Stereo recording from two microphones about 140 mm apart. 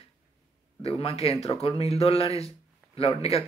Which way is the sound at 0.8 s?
45° left (ahead or behind).